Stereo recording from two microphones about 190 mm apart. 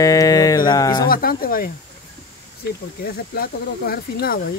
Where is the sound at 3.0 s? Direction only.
50° left (ahead or behind).